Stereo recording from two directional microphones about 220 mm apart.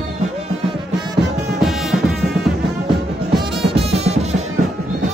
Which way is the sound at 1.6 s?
Centre (ahead or behind).